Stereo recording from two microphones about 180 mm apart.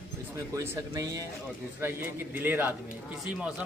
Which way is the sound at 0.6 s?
15° right (ahead or behind).